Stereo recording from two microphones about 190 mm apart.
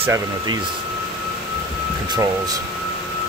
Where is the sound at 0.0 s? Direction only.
15° right (ahead or behind).